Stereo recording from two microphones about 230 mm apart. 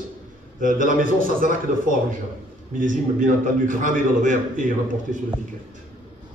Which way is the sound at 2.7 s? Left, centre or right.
Right.